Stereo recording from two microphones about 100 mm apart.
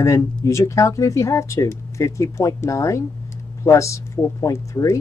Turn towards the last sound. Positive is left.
turn(degrees=30)  # may be behind; listen again after turning